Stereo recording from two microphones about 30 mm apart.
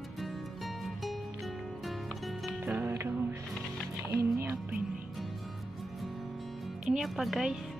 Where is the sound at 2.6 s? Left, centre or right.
Right.